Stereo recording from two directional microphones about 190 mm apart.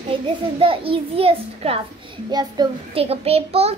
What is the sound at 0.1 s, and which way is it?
A child's voice, 30° right (ahead or behind).